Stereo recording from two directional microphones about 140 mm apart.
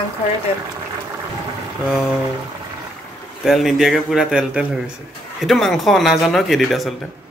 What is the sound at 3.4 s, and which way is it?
Speech, centre (ahead or behind).